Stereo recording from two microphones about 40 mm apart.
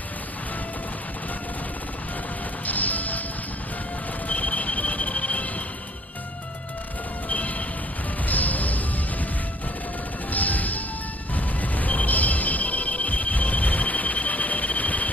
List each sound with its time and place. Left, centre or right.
2.6 s music: left
4.3 s music: left
7.2 s train: left
8.3 s music: left
10.3 s smash: left
11.3 s music: left